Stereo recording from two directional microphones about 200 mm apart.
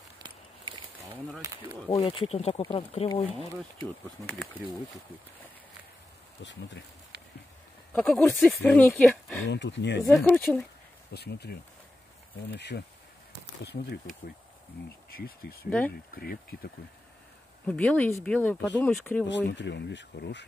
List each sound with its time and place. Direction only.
0.2 s walk: 20° right (ahead or behind)
2.0 s speech: 30° left (ahead or behind)
7.9 s speech: centre (ahead or behind)
9.5 s speech: 60° left (ahead or behind)
10.1 s speech: 5° left (ahead or behind)
11.1 s speech: 55° left (ahead or behind)
12.5 s speech: 60° left (ahead or behind)
15.0 s speech: 50° left (ahead or behind)
17.6 s speech: 5° left (ahead or behind)
19.2 s speech: 60° left (ahead or behind)